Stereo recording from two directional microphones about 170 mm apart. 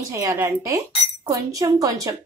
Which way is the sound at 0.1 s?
15° right (ahead or behind).